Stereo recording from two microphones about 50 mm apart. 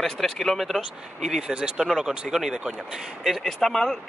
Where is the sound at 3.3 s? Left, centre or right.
Centre.